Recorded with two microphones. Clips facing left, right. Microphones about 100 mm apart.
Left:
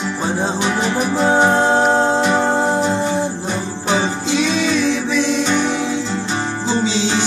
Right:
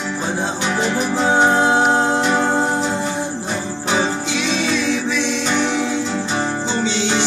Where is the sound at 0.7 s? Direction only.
5° left (ahead or behind).